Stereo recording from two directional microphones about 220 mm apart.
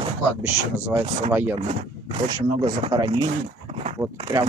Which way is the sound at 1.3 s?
10° right (ahead or behind).